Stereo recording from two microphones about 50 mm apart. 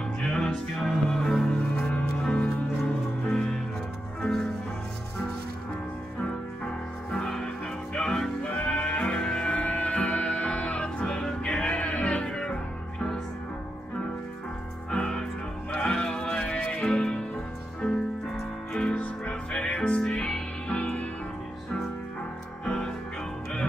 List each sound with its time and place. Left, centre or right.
0.2 s music: centre
6.2 s music: centre
14.9 s music: centre
22.7 s music: centre